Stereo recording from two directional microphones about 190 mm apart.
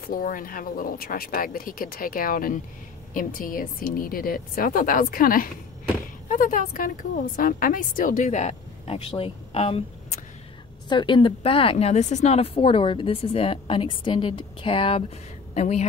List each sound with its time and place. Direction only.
0.0 s speech: 50° left (ahead or behind); by 9.8 s 30° left (ahead or behind)
10.9 s speech: 25° left (ahead or behind)